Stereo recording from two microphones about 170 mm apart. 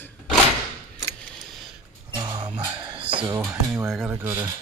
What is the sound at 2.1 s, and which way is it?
Music, 25° right (ahead or behind).